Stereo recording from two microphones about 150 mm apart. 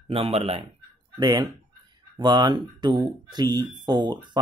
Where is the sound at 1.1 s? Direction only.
30° right (ahead or behind).